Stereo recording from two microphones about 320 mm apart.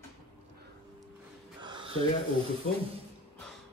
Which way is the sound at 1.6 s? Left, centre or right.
Centre.